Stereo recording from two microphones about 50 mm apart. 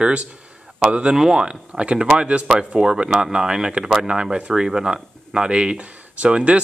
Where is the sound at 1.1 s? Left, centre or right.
Centre.